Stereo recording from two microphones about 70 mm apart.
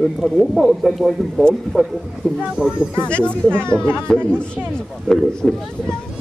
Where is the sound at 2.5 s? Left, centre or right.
Centre.